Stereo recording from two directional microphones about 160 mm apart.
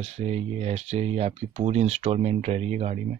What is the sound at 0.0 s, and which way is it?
Speech, 45° right (ahead or behind).